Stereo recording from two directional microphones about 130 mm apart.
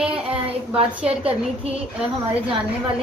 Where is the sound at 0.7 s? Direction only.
45° right (ahead or behind).